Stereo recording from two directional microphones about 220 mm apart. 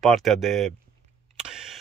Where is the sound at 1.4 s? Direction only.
5° right (ahead or behind).